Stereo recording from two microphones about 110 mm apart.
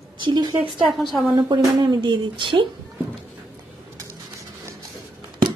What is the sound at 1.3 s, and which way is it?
Speech, 40° right (ahead or behind).